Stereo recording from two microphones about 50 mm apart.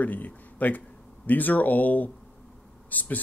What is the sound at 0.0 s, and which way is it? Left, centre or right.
Speech, left.